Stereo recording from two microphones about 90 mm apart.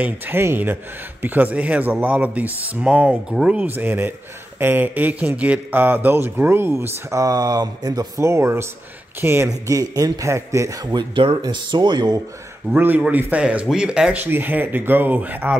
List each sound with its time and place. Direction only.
0.0 s speech: 25° right (ahead or behind)
3.6 s speech: 20° right (ahead or behind); by 8.1 s 50° right (ahead or behind)
8.2 s speech: 30° right (ahead or behind)
9.5 s speech: 40° right (ahead or behind)
12.7 s speech: 20° right (ahead or behind)
14.2 s speech: 20° right (ahead or behind)